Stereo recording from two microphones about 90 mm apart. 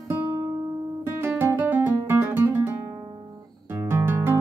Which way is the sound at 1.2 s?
25° right (ahead or behind).